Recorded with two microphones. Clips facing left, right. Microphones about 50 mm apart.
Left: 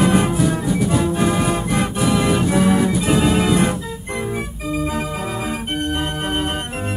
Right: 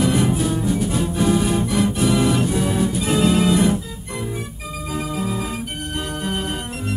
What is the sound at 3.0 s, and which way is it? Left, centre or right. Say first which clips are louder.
Music: left 1 dB; left.